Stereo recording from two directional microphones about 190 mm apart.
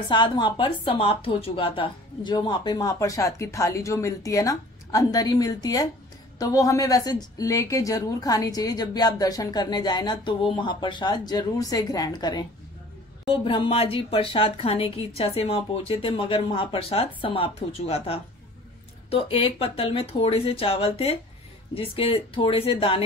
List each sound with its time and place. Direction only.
0.1 s a woman's voice: 25° left (ahead or behind)